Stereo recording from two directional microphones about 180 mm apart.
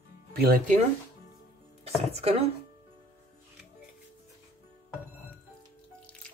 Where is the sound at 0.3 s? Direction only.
60° right (ahead or behind).